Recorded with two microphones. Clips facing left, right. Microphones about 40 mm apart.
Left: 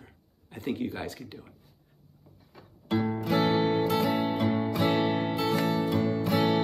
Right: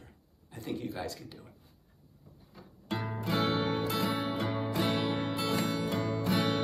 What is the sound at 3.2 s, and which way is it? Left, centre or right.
Music, left.